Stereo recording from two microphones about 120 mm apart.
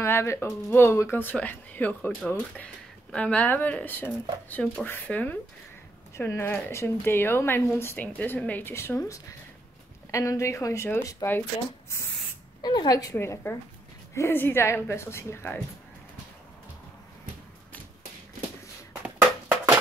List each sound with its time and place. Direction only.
0.0 s speech: 20° left (ahead or behind)
12.6 s a woman's voice: 35° left (ahead or behind)
13.1 s speech: 20° left (ahead or behind)